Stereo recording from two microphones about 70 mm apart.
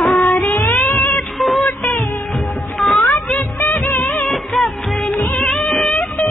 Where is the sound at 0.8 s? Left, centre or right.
Left.